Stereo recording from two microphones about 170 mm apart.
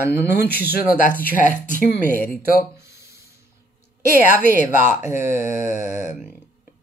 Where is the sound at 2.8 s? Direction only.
15° right (ahead or behind).